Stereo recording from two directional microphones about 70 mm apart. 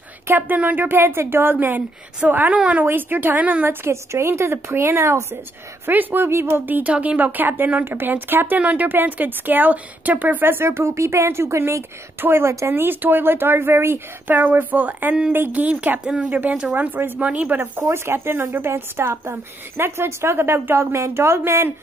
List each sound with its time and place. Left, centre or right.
0.4 s a woman's voice: right
3.8 s speech: right
5.9 s a woman's voice: right
17.7 s speech: right